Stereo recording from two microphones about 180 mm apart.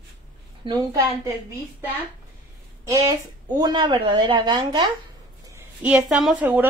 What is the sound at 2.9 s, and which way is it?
A woman's voice, 20° right (ahead or behind).